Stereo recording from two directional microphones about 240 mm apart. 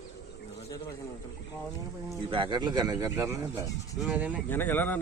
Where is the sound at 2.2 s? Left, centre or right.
Right.